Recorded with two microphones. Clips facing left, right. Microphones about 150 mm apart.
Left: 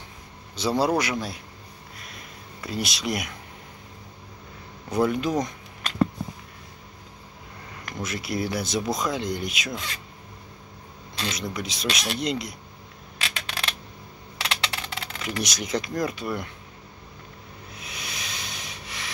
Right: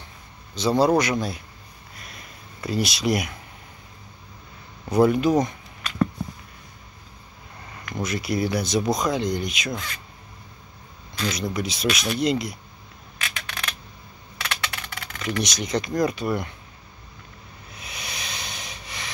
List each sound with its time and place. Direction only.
0.6 s speech: 10° left (ahead or behind)
2.0 s a sound: centre (ahead or behind)
4.8 s speech: centre (ahead or behind)
8.0 s speech: centre (ahead or behind)
11.3 s speech: centre (ahead or behind)
13.2 s a sound: 30° left (ahead or behind)
15.4 s speech: 5° left (ahead or behind)
17.7 s sanding: centre (ahead or behind)